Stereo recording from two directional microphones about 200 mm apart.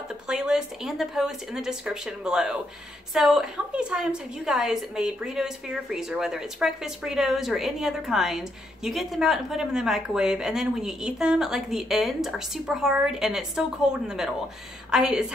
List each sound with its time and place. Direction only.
0.3 s a woman's voice: 5° right (ahead or behind)